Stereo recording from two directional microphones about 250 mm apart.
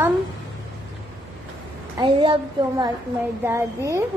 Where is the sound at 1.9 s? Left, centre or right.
Centre.